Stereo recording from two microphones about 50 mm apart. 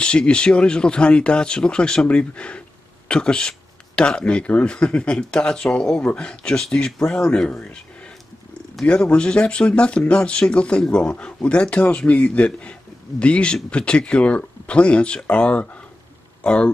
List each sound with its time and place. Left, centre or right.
0.0 s speech: centre
8.8 s speech: left